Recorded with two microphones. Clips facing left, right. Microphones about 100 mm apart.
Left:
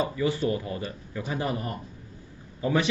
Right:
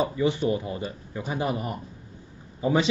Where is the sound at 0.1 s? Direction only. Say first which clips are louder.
Right 2 dB; 20° right (ahead or behind).